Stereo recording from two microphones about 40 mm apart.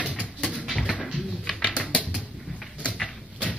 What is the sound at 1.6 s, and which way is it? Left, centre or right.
Typewriter, left.